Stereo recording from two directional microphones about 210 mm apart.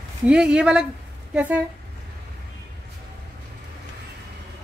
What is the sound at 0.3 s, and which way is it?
A woman's voice, 5° right (ahead or behind).